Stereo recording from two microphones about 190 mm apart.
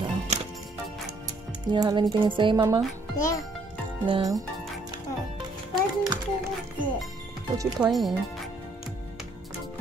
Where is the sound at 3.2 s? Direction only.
15° left (ahead or behind).